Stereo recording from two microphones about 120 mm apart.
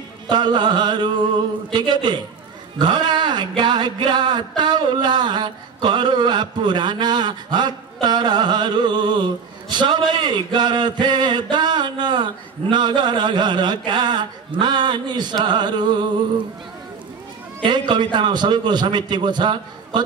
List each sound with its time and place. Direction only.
0.3 s speech: 40° right (ahead or behind)
2.8 s a sound: 40° right (ahead or behind)
11.5 s speech: 40° right (ahead or behind)
17.6 s speech: 40° right (ahead or behind)